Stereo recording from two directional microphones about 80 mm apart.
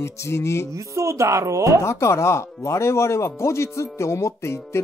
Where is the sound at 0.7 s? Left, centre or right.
Right.